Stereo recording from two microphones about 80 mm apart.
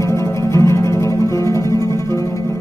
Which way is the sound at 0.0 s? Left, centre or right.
Left.